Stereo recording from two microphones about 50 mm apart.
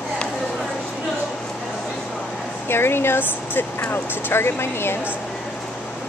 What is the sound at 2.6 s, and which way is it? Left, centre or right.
Speech, left.